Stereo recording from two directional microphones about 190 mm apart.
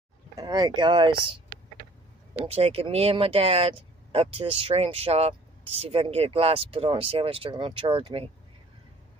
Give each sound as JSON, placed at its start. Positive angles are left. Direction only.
{"t": 0.4, "sound": "speech", "side_deg": -20}
{"t": 2.3, "sound": "speech", "side_deg": -30}